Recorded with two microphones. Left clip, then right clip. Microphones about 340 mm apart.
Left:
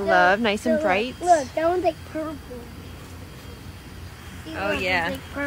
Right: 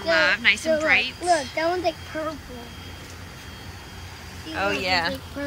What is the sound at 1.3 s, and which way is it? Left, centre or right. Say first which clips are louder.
Speech: left 4 dB; centre.